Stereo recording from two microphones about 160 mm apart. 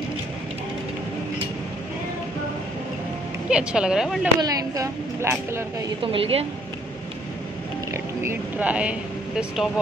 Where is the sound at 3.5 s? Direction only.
5° right (ahead or behind).